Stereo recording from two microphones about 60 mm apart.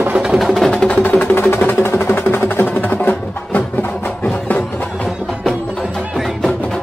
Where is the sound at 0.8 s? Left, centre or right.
Left.